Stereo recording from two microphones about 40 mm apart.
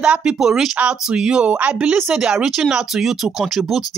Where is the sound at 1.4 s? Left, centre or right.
Right.